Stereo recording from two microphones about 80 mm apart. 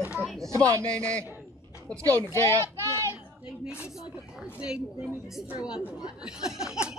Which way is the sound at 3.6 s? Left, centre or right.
Centre.